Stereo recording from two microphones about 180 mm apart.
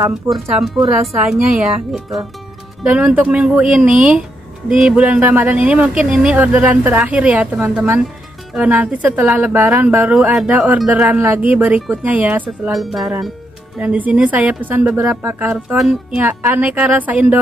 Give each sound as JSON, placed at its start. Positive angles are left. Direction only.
{"t": 0.3, "sound": "speech", "side_deg": 0}
{"t": 2.8, "sound": "a woman's voice", "side_deg": -5}